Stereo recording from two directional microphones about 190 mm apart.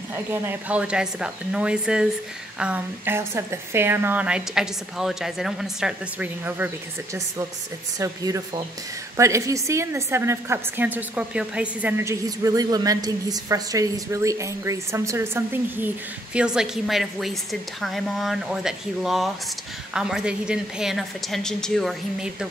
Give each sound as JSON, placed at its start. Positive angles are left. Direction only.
{"t": 0.1, "sound": "a woman's voice", "side_deg": -15}
{"t": 8.0, "sound": "a woman's voice", "side_deg": -20}